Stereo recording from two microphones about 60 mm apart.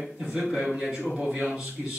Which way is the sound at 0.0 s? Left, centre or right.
Centre.